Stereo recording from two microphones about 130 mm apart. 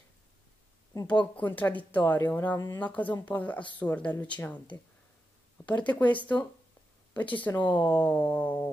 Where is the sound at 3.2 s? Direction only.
10° left (ahead or behind).